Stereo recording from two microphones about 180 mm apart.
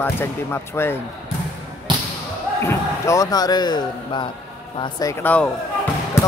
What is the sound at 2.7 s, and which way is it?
A man's voice, 15° left (ahead or behind).